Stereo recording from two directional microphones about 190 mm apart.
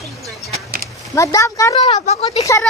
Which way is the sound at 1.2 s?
15° left (ahead or behind).